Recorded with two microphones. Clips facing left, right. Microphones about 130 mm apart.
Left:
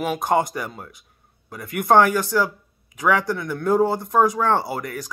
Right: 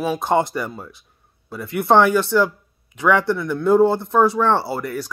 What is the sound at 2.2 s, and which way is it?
Speech, 15° left (ahead or behind).